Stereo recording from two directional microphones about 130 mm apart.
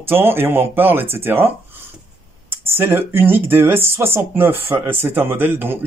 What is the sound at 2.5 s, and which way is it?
Speech, 15° right (ahead or behind).